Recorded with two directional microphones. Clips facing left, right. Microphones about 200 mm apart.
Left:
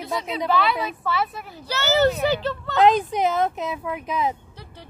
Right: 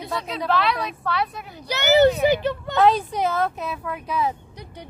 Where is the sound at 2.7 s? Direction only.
20° left (ahead or behind).